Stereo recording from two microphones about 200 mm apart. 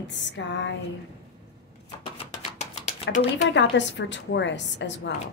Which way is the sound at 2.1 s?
35° left (ahead or behind).